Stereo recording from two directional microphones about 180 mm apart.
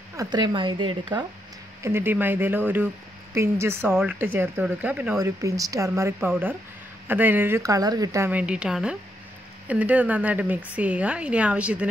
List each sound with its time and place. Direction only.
0.1 s speech: 20° right (ahead or behind)
1.8 s a woman's voice: 15° right (ahead or behind)
5.2 s a woman's voice: 20° right (ahead or behind)